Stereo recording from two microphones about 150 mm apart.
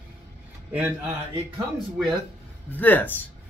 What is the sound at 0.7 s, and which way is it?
Speech, 10° right (ahead or behind).